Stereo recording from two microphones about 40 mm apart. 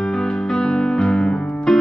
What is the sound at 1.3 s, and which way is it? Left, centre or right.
Piano, left.